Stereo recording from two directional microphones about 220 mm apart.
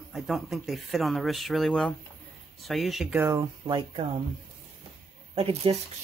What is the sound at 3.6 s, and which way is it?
Speech, 20° right (ahead or behind).